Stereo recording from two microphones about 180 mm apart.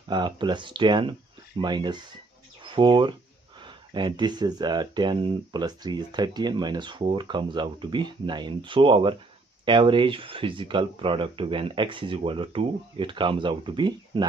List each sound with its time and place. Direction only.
0.1 s speech: 25° right (ahead or behind)